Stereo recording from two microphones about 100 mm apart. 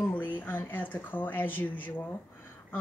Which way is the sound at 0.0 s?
20° left (ahead or behind).